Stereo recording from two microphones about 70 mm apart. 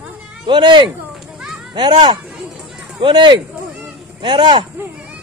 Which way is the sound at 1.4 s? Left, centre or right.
Centre.